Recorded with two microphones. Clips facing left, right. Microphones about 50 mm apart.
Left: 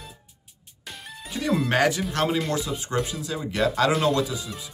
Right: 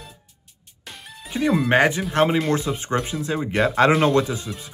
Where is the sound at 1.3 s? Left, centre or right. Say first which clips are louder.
Right 6 dB; right.